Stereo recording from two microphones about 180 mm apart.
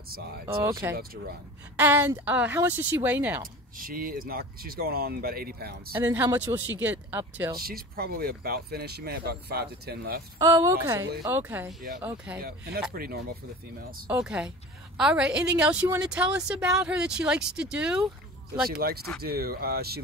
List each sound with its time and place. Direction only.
0.6 s speech: 15° right (ahead or behind)
3.7 s speech: 50° right (ahead or behind)
6.1 s speech: 10° right (ahead or behind)
7.5 s speech: 55° right (ahead or behind)
10.4 s speech: 20° right (ahead or behind)
12.9 s speech: 60° right (ahead or behind)
14.0 s speech: 5° right (ahead or behind)
18.7 s speech: 55° right (ahead or behind)